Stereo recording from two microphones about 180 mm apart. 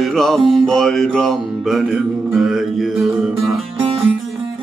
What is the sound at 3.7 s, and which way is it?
Music, 30° right (ahead or behind).